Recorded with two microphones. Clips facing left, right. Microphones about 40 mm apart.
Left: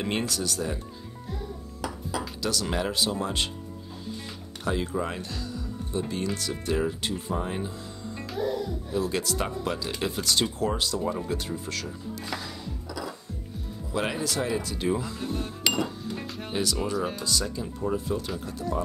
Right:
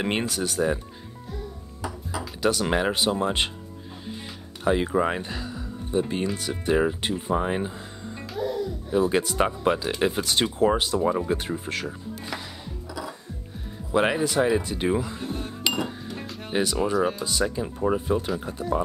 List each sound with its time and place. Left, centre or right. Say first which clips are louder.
0.0 s speech: right 3 dB; right
2.4 s speech: right 7 dB; right
4.6 s speech: right 6 dB; right
8.9 s speech: right 6 dB; right
13.9 s speech: right 7 dB; right
15.1 s speech: even; centre
16.5 s speech: right 5 dB; right